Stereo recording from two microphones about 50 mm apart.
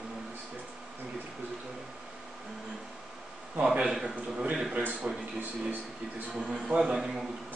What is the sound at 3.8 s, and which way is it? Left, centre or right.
A man's voice, centre.